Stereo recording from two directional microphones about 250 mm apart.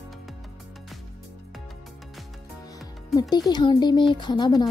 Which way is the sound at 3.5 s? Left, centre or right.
Centre.